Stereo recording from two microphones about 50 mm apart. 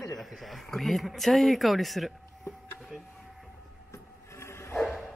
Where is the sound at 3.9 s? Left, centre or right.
Left.